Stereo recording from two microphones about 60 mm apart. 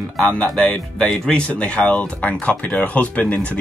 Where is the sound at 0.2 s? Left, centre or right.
Centre.